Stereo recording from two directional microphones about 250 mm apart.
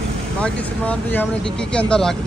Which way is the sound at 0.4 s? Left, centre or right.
Centre.